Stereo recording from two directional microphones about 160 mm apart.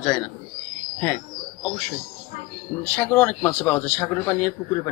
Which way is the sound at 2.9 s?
10° left (ahead or behind).